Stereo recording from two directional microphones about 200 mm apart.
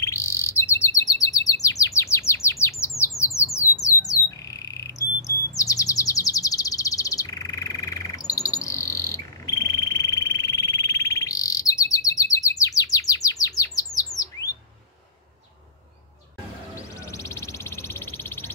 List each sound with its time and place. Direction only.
0.0 s chirp: 15° left (ahead or behind)
2.8 s bird: 15° left (ahead or behind)
16.7 s a sound: 15° left (ahead or behind)